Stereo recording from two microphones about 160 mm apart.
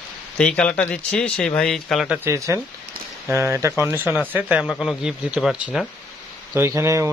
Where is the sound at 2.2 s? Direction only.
20° right (ahead or behind).